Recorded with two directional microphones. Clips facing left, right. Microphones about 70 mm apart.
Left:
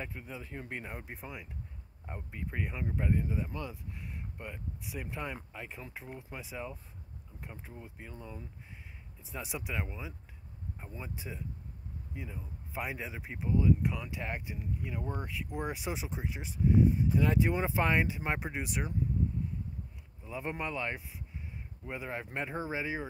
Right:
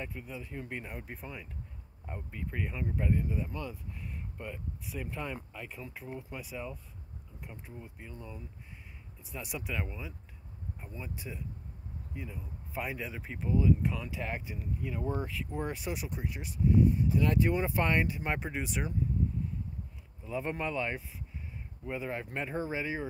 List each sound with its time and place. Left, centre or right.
0.1 s speech: left
1.0 s speech: centre
9.6 s speech: centre
15.9 s speech: left
18.3 s speech: centre
20.2 s speech: centre
21.8 s speech: centre